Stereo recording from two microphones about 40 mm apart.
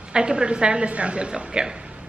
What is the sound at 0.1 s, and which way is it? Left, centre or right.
Speech, right.